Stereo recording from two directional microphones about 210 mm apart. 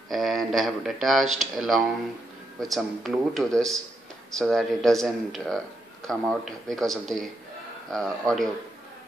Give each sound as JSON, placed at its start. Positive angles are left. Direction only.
{"t": 0.1, "sound": "speech", "side_deg": 0}
{"t": 1.2, "sound": "speech", "side_deg": -80}
{"t": 2.6, "sound": "speech", "side_deg": 0}